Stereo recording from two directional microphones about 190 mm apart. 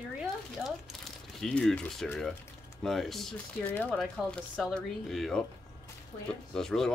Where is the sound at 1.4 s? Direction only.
Centre (ahead or behind).